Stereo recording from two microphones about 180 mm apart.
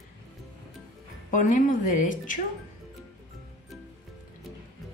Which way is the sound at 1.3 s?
45° left (ahead or behind).